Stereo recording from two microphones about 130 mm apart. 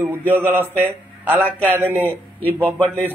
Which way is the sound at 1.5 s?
10° left (ahead or behind).